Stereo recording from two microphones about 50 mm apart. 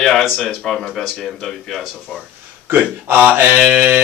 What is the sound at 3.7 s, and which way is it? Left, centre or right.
Speech, right.